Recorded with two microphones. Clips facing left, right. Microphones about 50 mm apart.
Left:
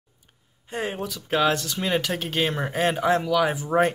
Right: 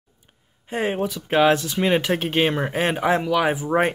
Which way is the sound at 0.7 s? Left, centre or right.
Right.